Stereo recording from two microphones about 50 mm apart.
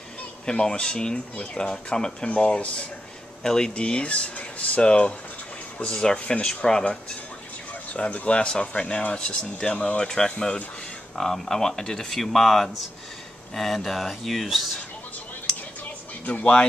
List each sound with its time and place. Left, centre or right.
0.5 s speech: centre
6.4 s speech: centre
15.8 s a sound: left